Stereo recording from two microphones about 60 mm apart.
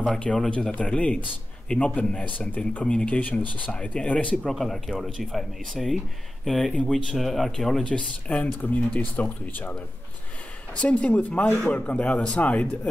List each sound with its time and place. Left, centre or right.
0.0 s speech: centre
2.8 s speech: centre
3.2 s speech: left
4.5 s speech: centre
7.8 s speech: left